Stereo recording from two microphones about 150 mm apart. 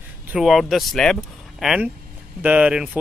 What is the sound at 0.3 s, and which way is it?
Speech, centre (ahead or behind).